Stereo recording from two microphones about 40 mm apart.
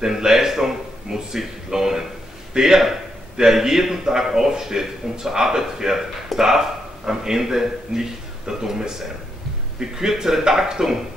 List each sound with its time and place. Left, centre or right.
0.0 s a man's voice: centre